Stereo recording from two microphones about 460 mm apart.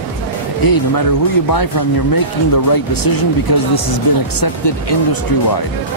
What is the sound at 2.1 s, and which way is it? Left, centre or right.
Speech, left.